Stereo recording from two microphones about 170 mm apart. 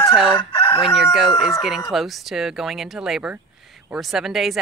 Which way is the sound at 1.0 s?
Centre (ahead or behind).